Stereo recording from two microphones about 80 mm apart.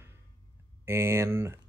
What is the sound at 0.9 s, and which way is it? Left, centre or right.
Speech, right.